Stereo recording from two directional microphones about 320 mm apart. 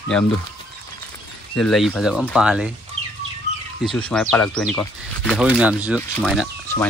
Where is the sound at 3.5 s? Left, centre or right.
Left.